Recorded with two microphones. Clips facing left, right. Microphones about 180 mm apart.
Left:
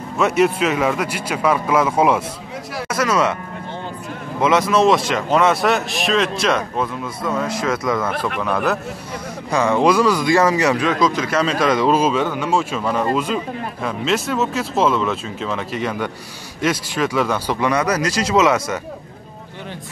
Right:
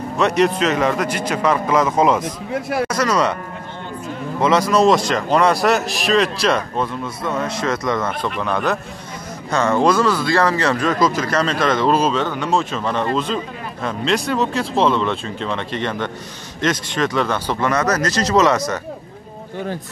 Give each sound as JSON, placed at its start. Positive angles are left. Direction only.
{"t": 0.4, "sound": "speech", "side_deg": 5}
{"t": 4.4, "sound": "speech", "side_deg": 5}
{"t": 10.7, "sound": "speech", "side_deg": 0}